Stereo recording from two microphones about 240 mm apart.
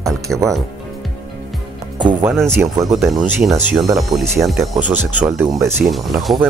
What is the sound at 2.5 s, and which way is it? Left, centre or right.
Speech, centre.